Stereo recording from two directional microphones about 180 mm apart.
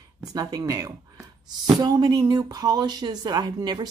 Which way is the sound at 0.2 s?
20° right (ahead or behind).